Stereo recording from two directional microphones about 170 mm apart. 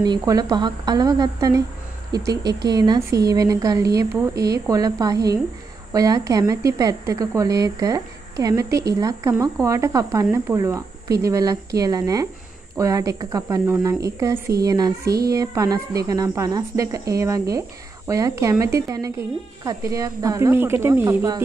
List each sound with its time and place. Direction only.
0.0 s speech: 20° right (ahead or behind)